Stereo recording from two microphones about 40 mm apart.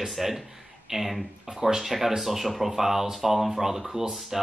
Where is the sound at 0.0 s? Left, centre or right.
Centre.